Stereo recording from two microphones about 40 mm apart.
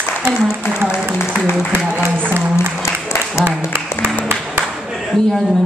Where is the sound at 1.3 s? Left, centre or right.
Right.